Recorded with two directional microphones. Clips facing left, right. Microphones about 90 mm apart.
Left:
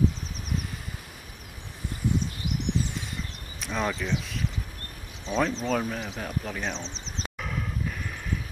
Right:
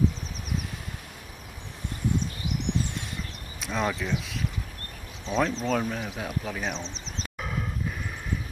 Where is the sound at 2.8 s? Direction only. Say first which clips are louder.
Even; centre (ahead or behind).